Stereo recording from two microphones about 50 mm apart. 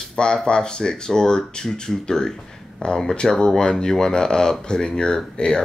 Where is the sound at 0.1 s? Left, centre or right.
Centre.